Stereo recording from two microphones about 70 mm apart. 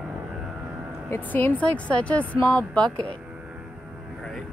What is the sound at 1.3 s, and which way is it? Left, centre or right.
Speech, left.